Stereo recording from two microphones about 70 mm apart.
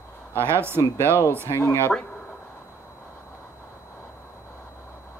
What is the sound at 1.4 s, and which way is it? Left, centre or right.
Speech, left.